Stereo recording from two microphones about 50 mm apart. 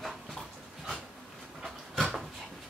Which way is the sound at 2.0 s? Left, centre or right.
Centre.